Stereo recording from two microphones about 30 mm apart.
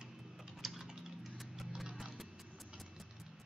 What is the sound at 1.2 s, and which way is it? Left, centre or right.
Music, centre.